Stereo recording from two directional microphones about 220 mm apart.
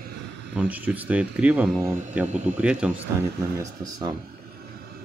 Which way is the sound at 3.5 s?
15° right (ahead or behind).